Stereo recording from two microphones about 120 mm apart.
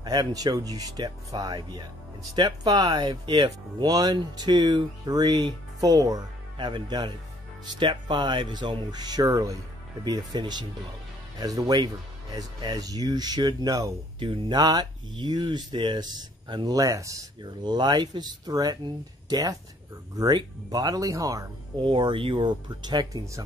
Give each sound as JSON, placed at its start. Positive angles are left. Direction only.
{"t": 0.0, "sound": "speech", "side_deg": -35}
{"t": 14.2, "sound": "speech", "side_deg": -40}
{"t": 21.8, "sound": "speech", "side_deg": -45}